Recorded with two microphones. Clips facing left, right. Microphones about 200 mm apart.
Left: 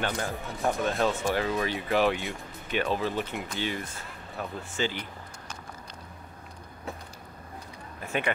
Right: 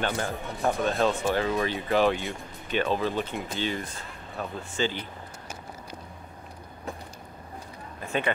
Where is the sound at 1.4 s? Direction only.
30° right (ahead or behind).